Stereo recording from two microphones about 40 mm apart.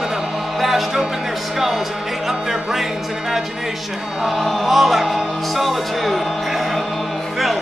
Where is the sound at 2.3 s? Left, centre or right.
Centre.